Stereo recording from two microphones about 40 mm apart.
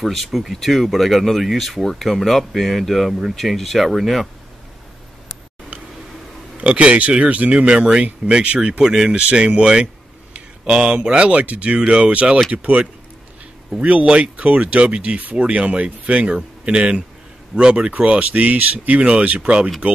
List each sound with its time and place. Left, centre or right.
0.0 s speech: centre
6.6 s speech: right
14.0 s speech: right
17.9 s speech: right